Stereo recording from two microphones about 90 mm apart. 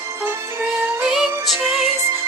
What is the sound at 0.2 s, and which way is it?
Music, 25° right (ahead or behind).